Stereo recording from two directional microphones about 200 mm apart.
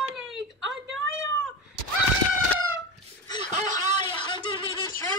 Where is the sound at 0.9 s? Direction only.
75° right (ahead or behind).